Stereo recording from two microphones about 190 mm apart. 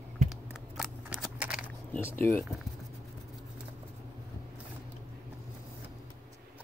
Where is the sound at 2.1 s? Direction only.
10° left (ahead or behind).